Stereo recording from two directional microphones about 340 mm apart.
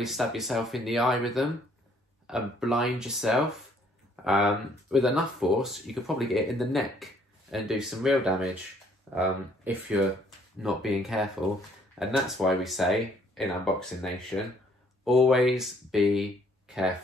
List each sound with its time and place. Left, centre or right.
0.0 s speech: centre
9.7 s speech: centre